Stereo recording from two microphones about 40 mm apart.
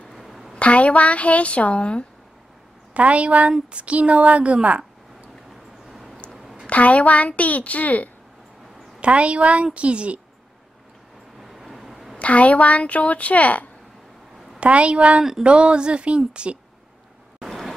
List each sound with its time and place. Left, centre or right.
0.1 s a sound: centre
0.6 s speech: left
2.9 s a woman's voice: right
5.9 s a sound: centre
6.7 s speech: left
9.0 s a woman's voice: right
11.4 s vehicle: centre
12.2 s speech: left
14.6 s a woman's voice: right
17.5 s vehicle: centre